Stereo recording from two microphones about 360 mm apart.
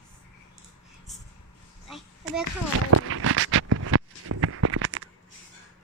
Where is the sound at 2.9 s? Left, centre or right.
Right.